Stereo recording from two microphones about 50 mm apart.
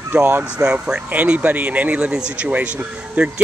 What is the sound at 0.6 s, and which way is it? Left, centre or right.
Speech, right.